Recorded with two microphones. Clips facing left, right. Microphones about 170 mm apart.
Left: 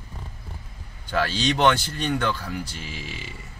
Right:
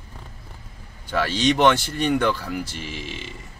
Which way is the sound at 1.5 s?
10° right (ahead or behind).